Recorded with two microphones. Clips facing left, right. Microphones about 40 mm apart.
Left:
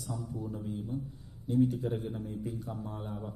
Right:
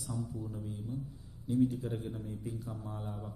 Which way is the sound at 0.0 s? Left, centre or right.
Left.